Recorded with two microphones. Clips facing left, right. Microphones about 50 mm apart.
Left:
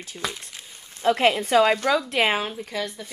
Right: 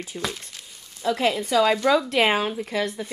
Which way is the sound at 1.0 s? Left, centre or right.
Left.